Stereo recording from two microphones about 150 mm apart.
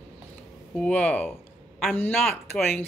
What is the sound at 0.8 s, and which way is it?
Speech, 10° left (ahead or behind).